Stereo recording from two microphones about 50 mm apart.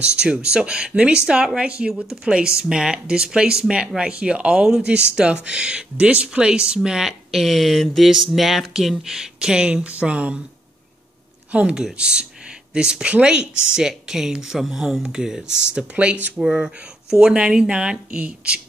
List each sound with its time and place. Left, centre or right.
0.0 s speech: right
11.7 s speech: centre